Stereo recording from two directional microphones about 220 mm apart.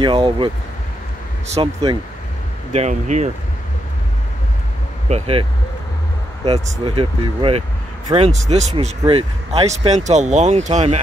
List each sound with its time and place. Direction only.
0.0 s speech: 20° right (ahead or behind)
1.5 s speech: 25° right (ahead or behind)
5.1 s speech: 25° right (ahead or behind)